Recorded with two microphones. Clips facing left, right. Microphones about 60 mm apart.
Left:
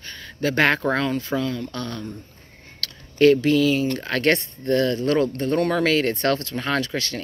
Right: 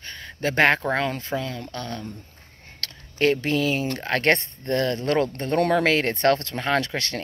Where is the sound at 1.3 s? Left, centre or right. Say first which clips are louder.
Left 4 dB; centre.